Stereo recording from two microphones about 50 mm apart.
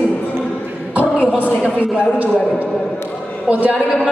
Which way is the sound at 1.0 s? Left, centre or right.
Right.